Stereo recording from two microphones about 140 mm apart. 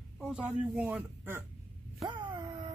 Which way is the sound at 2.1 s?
35° right (ahead or behind).